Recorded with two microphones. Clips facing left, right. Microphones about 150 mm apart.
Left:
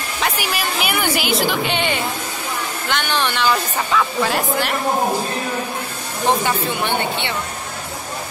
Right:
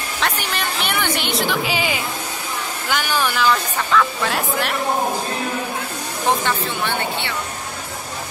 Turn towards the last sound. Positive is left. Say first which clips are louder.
# left 2 dB
turn(degrees=20)  # may be behind; listen again after turning